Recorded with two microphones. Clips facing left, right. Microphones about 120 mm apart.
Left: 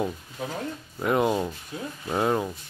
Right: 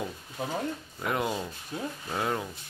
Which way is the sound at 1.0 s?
30° left (ahead or behind).